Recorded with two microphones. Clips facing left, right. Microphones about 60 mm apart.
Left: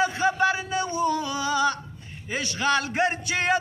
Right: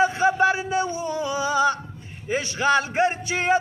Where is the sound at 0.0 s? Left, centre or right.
Right.